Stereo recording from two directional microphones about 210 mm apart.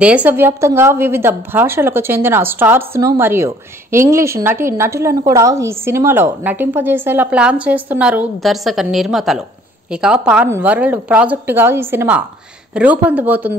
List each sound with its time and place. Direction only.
0.0 s a woman's voice: 5° right (ahead or behind)